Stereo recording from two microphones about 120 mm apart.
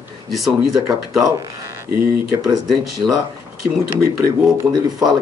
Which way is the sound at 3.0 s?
30° right (ahead or behind).